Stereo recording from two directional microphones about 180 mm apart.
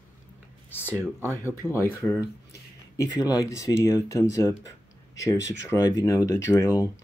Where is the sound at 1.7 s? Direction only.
15° left (ahead or behind).